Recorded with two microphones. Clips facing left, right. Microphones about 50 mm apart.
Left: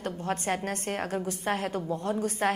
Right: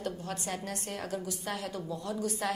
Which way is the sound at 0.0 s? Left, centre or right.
Left.